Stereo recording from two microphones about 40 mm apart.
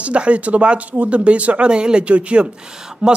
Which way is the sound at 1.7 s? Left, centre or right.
Right.